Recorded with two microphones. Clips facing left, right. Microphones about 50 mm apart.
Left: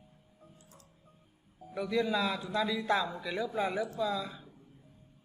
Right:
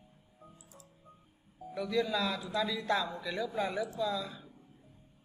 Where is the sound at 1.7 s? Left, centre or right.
Centre.